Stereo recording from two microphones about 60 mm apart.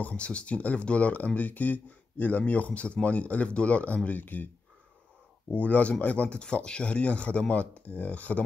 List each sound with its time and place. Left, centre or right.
0.0 s speech: left
5.5 s speech: left